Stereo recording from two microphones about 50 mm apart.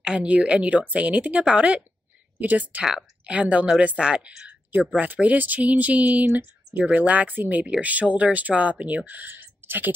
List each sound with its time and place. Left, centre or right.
0.0 s speech: centre
2.3 s speech: right; by 4.5 s centre
4.9 s speech: right